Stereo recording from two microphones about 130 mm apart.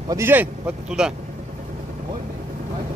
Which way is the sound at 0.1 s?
15° right (ahead or behind).